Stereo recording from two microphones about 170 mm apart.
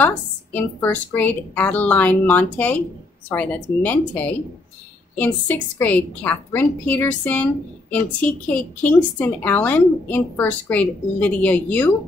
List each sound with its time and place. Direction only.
0.0 s a woman's voice: 10° left (ahead or behind)